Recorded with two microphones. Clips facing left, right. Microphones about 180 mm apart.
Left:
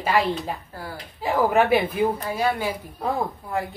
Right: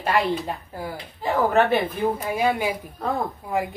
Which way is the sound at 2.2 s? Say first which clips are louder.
Right 2 dB; 10° right (ahead or behind).